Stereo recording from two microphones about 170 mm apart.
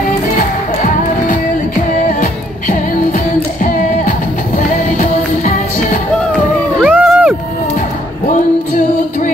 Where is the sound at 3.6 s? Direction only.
50° left (ahead or behind).